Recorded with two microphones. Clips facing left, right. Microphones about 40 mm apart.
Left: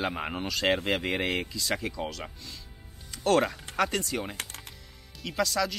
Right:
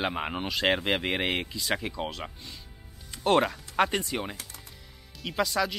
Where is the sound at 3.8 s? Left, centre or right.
Right.